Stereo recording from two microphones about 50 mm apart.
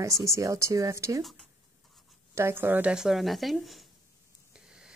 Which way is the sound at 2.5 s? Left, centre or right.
Right.